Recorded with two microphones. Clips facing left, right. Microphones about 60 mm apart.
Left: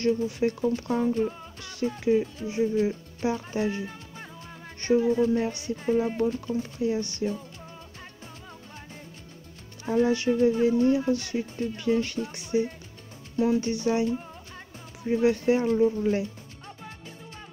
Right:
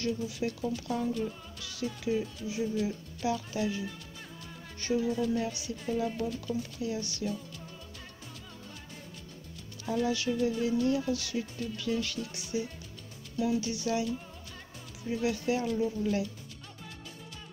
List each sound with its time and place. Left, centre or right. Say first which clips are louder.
0.0 s speech: left 8 dB; left
9.8 s speech: left 7 dB; left